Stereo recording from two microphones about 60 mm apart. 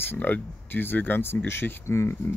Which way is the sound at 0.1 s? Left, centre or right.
Left.